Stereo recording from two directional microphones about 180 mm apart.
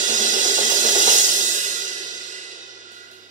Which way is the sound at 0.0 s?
45° right (ahead or behind).